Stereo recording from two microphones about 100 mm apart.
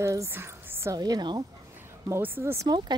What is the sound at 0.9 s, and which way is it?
Speech, 40° right (ahead or behind).